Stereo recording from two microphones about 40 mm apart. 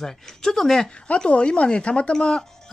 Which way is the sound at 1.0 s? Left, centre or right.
Left.